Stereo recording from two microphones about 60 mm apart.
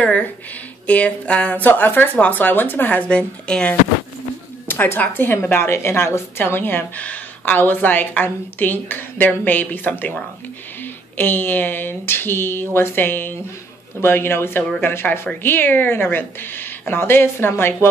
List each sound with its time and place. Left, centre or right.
0.0 s a sound: left
0.8 s a woman's voice: left
4.6 s a woman's voice: left
7.0 s a woman's voice: left